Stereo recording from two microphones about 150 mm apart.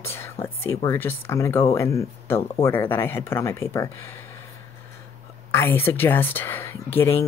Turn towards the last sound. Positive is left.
turn(degrees=15)  # may be behind; listen again after turning